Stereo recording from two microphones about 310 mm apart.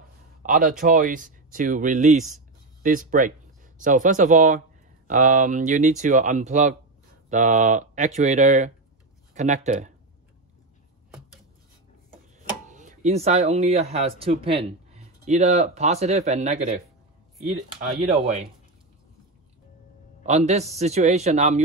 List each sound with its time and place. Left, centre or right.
0.4 s speech: right
12.6 s speech: right
20.2 s speech: right